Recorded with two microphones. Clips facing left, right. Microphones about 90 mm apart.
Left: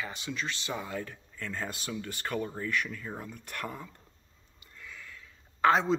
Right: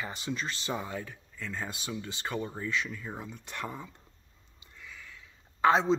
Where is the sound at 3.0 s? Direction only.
5° right (ahead or behind).